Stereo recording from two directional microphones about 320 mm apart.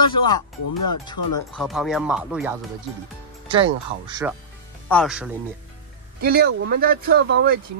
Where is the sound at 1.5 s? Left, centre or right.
Centre.